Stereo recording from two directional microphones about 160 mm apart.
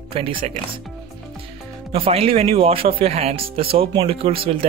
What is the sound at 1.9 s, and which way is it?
Speech, 35° right (ahead or behind).